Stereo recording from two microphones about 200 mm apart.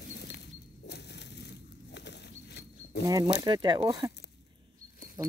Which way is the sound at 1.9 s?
60° left (ahead or behind).